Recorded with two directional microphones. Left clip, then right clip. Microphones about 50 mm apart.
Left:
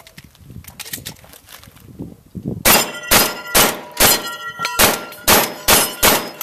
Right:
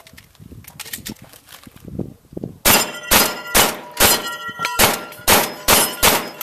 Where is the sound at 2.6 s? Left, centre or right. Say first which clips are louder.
Left 1 dB; centre.